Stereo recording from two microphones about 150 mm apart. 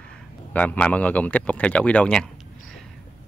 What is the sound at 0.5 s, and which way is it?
Speech, 10° left (ahead or behind).